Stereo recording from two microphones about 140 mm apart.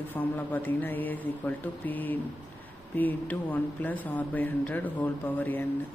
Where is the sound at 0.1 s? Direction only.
10° left (ahead or behind).